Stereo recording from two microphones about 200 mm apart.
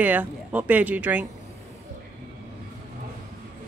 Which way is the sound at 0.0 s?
10° right (ahead or behind).